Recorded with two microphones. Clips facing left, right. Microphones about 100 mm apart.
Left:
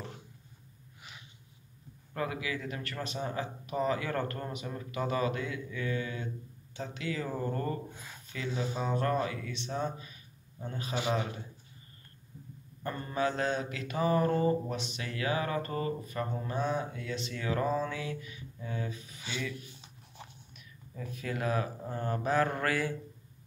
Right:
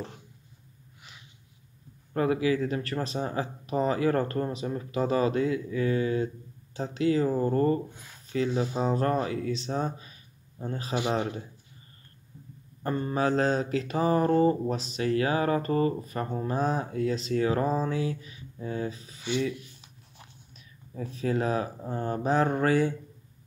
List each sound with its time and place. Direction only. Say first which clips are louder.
2.1 s mantra: right 10 dB; 35° right (ahead or behind)
12.8 s mantra: right 5 dB; 30° right (ahead or behind)
20.5 s speech: right 7 dB; 30° right (ahead or behind)